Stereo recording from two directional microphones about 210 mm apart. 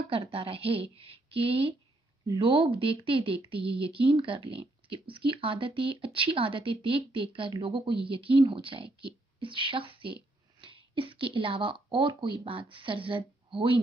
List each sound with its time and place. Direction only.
0.1 s speech: 25° right (ahead or behind)